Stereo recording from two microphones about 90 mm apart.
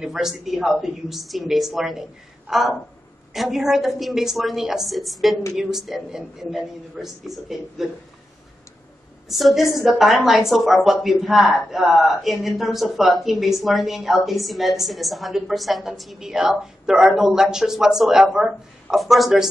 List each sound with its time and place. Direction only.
0.0 s speech: 5° right (ahead or behind)
9.3 s speech: centre (ahead or behind)